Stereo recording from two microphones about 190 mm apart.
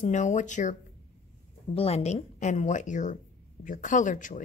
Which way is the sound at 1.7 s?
35° left (ahead or behind).